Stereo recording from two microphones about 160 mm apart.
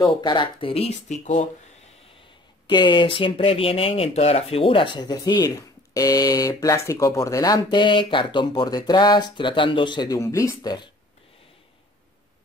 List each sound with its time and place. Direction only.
0.2 s speech: 30° left (ahead or behind); by 1.5 s 45° left (ahead or behind)
2.6 s speech: 30° left (ahead or behind)